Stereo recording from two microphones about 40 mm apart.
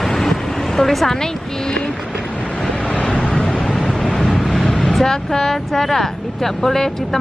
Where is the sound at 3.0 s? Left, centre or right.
Left.